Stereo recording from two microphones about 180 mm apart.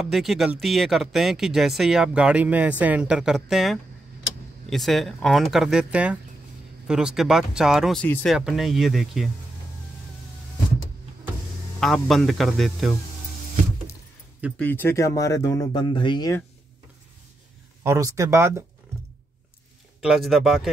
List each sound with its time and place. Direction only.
0.1 s speech: centre (ahead or behind)
11.8 s speech: centre (ahead or behind)
14.6 s speech: 10° left (ahead or behind)
17.8 s speech: 15° right (ahead or behind)
20.0 s speech: centre (ahead or behind)